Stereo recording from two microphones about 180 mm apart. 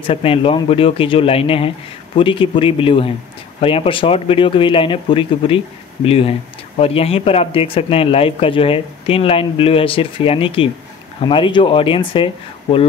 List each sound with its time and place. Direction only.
0.0 s speech: 30° left (ahead or behind)